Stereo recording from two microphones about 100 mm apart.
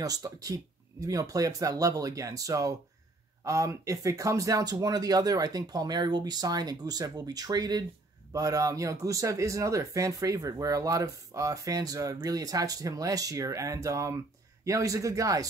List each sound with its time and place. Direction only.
0.0 s speech: 35° right (ahead or behind)